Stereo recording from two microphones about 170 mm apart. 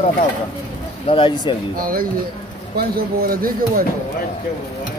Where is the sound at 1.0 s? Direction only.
30° left (ahead or behind).